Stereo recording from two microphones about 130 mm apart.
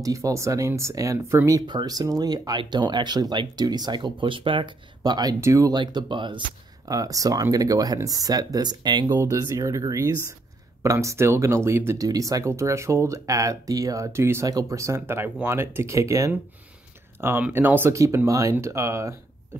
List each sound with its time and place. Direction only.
0.0 s speech: 25° right (ahead or behind)
6.9 s speech: 25° right (ahead or behind)
9.1 s speech: 25° right (ahead or behind)